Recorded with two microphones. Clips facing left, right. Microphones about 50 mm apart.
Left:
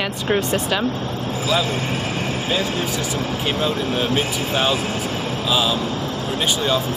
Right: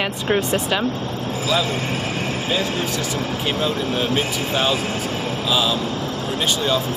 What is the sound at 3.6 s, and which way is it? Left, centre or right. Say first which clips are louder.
Speech: left 1 dB; centre.